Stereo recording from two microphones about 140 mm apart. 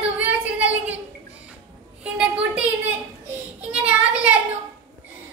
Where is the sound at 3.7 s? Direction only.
10° right (ahead or behind).